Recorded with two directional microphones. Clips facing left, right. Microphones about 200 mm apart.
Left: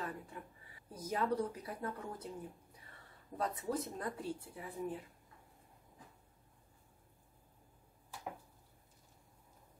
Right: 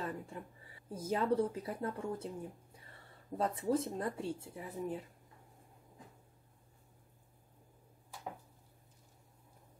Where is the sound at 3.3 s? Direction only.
25° right (ahead or behind).